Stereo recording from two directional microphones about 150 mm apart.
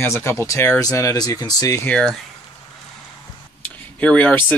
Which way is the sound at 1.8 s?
5° left (ahead or behind).